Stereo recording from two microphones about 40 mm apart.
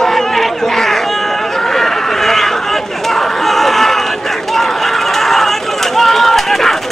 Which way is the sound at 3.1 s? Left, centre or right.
Centre.